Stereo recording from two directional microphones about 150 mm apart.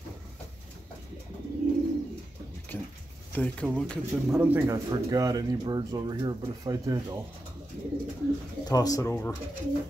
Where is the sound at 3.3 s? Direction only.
10° left (ahead or behind).